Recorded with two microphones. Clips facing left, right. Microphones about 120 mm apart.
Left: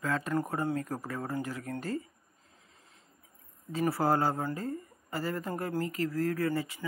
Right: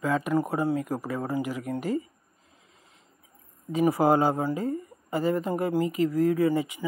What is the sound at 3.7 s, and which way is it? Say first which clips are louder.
Speech: right 6 dB; 15° right (ahead or behind).